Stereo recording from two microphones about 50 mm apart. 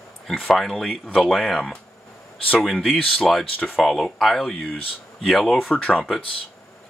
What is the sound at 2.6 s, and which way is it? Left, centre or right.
Speech, centre.